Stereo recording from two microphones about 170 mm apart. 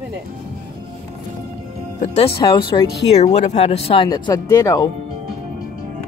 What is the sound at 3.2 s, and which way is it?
Speech, 40° left (ahead or behind).